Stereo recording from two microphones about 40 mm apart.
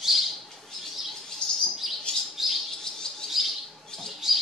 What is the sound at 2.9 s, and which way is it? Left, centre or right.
Bird, centre.